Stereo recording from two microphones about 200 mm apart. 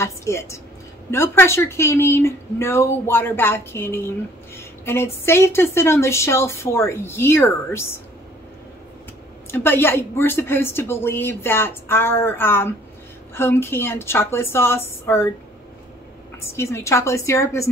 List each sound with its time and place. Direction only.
0.0 s a woman's voice: 15° left (ahead or behind)
9.5 s a woman's voice: 10° left (ahead or behind)
16.3 s a woman's voice: 15° left (ahead or behind)